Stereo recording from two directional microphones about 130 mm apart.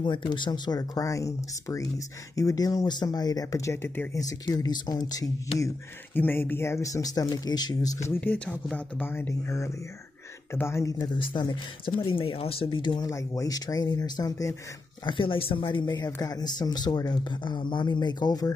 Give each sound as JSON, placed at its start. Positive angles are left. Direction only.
{"t": 0.0, "sound": "speech", "side_deg": 40}
{"t": 4.2, "sound": "speech", "side_deg": 25}
{"t": 6.1, "sound": "speech", "side_deg": 15}
{"t": 9.0, "sound": "speech", "side_deg": 15}
{"t": 11.1, "sound": "speech", "side_deg": 35}
{"t": 13.1, "sound": "speech", "side_deg": 25}
{"t": 15.0, "sound": "speech", "side_deg": 40}